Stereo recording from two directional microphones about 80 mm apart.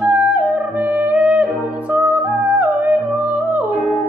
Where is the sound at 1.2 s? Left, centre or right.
Centre.